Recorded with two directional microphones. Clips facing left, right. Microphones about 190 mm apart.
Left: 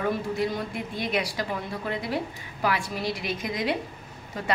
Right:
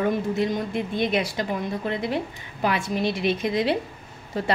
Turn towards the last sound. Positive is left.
turn(degrees=-30)  # may be behind; listen again after turning